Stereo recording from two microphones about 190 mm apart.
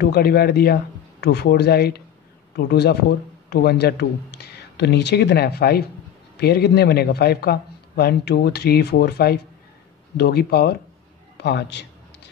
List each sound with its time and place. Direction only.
0.0 s a man's voice: 55° left (ahead or behind)